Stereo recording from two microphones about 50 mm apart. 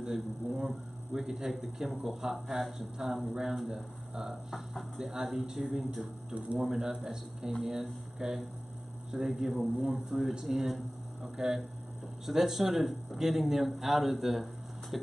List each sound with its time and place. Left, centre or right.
0.0 s a man's voice: centre
2.4 s speech: centre
6.3 s speech: right
6.7 s a man's voice: centre